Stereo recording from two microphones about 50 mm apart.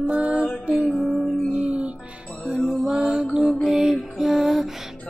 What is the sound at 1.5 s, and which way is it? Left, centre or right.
Music, right.